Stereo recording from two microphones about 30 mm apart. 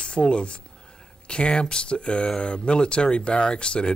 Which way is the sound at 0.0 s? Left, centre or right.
Left.